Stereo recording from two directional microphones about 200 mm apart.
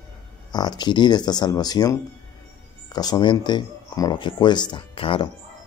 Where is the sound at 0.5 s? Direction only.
20° left (ahead or behind).